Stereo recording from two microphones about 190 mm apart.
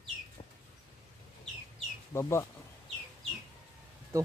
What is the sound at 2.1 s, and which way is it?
Speech, 15° left (ahead or behind).